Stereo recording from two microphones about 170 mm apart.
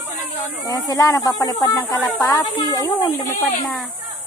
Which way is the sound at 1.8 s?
10° left (ahead or behind).